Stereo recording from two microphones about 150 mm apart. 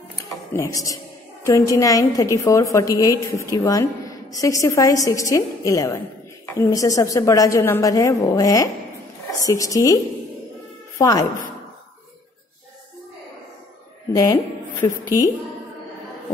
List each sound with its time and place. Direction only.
0.2 s a sound: 20° left (ahead or behind)
1.4 s a woman's voice: 20° left (ahead or behind)
11.0 s speech: 25° left (ahead or behind)
14.1 s a woman's voice: 20° left (ahead or behind)